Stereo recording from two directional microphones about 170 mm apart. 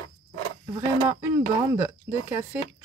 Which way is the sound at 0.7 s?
15° right (ahead or behind).